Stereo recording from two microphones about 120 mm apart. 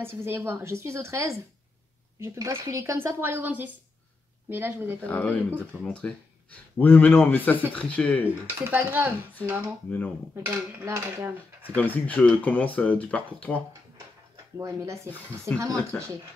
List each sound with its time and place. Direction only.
0.0 s speech: 20° right (ahead or behind)
5.0 s speech: 15° left (ahead or behind)
8.6 s speech: 15° right (ahead or behind)
9.8 s speech: 15° left (ahead or behind)
10.3 s speech: 20° right (ahead or behind)
11.7 s speech: 15° left (ahead or behind)
14.6 s speech: 25° right (ahead or behind)
15.0 s speech: 10° left (ahead or behind)